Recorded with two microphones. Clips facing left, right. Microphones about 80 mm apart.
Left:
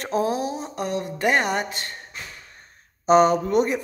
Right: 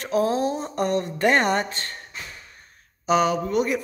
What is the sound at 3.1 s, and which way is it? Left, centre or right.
Speech, left.